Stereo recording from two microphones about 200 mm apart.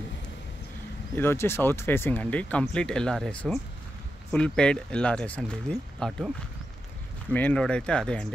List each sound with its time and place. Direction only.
1.1 s speech: 10° left (ahead or behind)
7.3 s speech: 5° left (ahead or behind)